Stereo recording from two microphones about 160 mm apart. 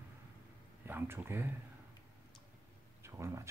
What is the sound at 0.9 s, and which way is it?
Speech, 15° right (ahead or behind).